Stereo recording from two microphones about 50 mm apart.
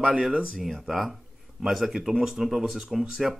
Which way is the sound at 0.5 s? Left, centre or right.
Centre.